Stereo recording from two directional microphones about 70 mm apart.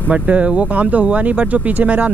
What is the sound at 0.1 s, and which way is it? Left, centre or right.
Speech, centre.